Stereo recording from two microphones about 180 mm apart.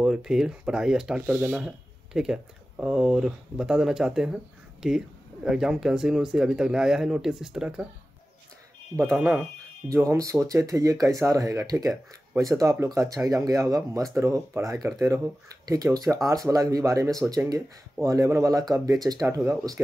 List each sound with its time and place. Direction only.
0.0 s speech: 5° right (ahead or behind)
9.8 s speech: 15° right (ahead or behind)